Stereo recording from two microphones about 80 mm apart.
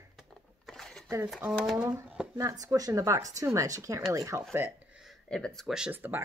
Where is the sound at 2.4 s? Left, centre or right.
Right.